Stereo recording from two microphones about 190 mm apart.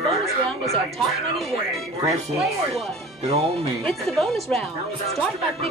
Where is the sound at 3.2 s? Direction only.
30° right (ahead or behind).